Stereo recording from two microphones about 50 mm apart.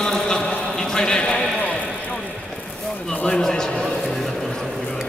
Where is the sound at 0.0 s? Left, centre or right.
Centre.